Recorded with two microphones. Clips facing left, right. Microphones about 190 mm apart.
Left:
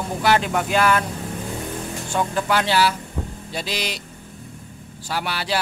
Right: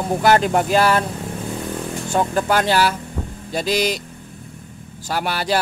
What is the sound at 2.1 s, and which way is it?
Speech, 40° right (ahead or behind).